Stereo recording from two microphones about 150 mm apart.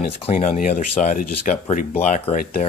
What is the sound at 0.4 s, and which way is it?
Speech, 60° left (ahead or behind).